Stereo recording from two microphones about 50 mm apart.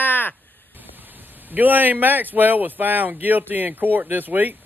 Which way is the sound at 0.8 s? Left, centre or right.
Right.